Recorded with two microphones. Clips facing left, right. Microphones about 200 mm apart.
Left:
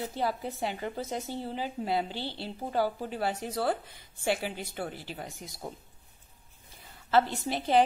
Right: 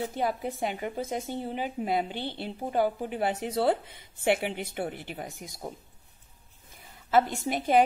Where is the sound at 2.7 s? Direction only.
20° right (ahead or behind).